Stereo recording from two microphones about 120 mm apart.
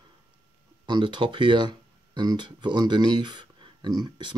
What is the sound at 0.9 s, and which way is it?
Speech, 40° right (ahead or behind).